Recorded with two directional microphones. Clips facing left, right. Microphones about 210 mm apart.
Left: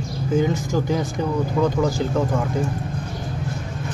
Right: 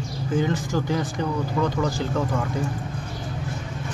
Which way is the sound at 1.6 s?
5° left (ahead or behind).